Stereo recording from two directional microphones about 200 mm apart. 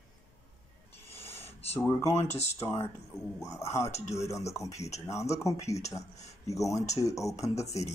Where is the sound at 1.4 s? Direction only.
30° left (ahead or behind).